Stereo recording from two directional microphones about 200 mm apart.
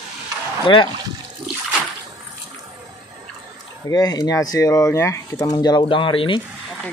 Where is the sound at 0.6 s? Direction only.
25° left (ahead or behind).